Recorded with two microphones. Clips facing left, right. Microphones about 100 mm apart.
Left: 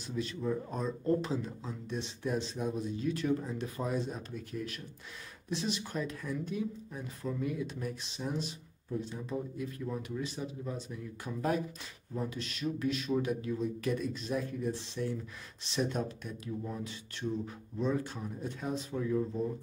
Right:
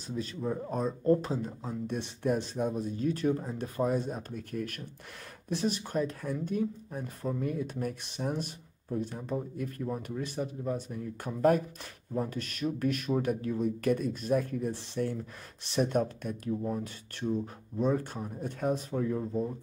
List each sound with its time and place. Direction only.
0.0 s speech: 40° right (ahead or behind)